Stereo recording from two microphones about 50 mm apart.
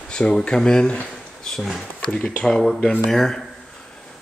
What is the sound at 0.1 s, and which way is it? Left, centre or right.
Speech, centre.